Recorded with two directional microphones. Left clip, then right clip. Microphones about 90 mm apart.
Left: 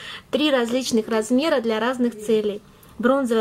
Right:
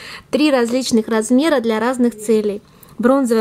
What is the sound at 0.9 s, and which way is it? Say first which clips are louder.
Speech: right 4 dB; 50° right (ahead or behind).